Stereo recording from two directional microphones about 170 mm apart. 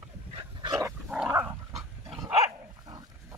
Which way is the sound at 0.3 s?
30° right (ahead or behind).